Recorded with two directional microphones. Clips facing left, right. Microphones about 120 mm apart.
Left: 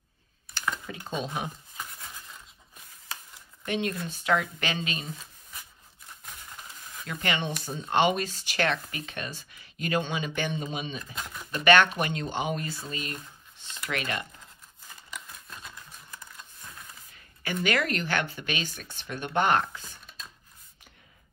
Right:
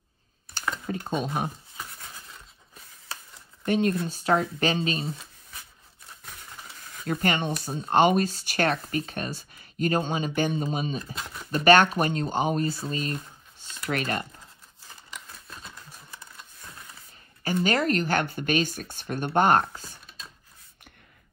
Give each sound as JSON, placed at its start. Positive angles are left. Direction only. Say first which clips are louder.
{"t": 0.8, "sound": "speech", "louder": "right 5 dB", "side_deg": -45}
{"t": 3.6, "sound": "speech", "louder": "right 6 dB", "side_deg": -40}
{"t": 7.1, "sound": "speech", "louder": "right 5 dB", "side_deg": -45}
{"t": 17.1, "sound": "a woman's voice", "louder": "right 5 dB", "side_deg": -35}